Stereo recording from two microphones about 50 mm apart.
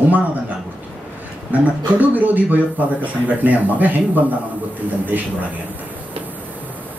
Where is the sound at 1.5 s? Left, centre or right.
Right.